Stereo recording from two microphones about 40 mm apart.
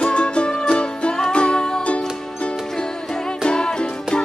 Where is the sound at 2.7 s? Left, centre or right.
Centre.